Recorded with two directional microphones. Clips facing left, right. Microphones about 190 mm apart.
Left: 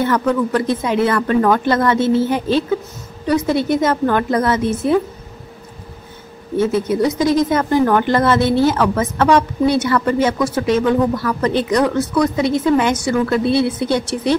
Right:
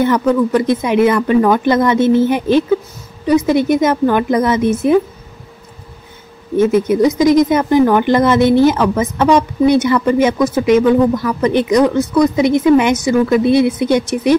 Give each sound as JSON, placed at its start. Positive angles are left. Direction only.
{"t": 0.0, "sound": "speech", "side_deg": -15}
{"t": 6.6, "sound": "speech", "side_deg": -15}